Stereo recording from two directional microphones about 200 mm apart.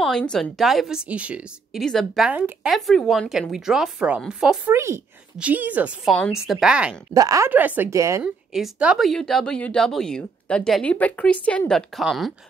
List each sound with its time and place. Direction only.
0.0 s speech: 5° left (ahead or behind)
7.2 s a woman's voice: 15° right (ahead or behind)
8.2 s speech: 5° right (ahead or behind)